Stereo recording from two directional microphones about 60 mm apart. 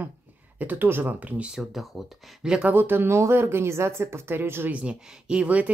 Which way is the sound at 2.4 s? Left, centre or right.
Centre.